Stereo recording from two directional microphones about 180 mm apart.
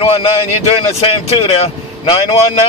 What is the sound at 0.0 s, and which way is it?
Speech, 30° left (ahead or behind).